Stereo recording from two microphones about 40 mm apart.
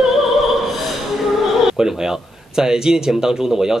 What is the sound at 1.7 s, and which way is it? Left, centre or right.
A man's voice, centre.